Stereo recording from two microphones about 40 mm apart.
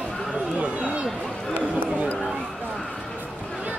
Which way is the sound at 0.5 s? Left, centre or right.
Right.